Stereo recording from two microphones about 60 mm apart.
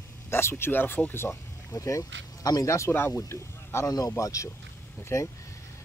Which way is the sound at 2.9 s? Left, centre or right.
Left.